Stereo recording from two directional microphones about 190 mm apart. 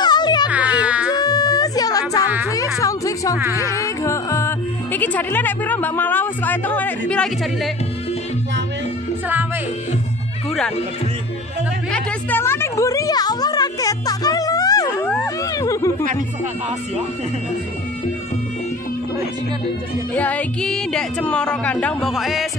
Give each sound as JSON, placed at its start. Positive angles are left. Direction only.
{"t": 0.0, "sound": "music", "side_deg": 20}
{"t": 0.5, "sound": "music", "side_deg": -5}
{"t": 1.1, "sound": "music", "side_deg": 20}
{"t": 3.5, "sound": "speech", "side_deg": 15}
{"t": 11.9, "sound": "a sound", "side_deg": 10}
{"t": 20.2, "sound": "speech", "side_deg": 5}